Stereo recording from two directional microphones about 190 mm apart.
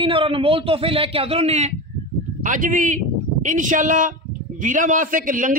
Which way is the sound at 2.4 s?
45° right (ahead or behind).